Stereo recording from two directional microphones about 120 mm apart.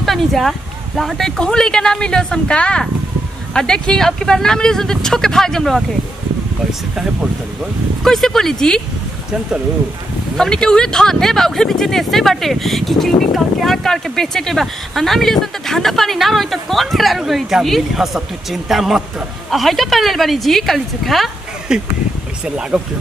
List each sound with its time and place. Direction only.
0.0 s speech: centre (ahead or behind)
8.0 s speech: 5° left (ahead or behind)
10.3 s speech: 5° left (ahead or behind)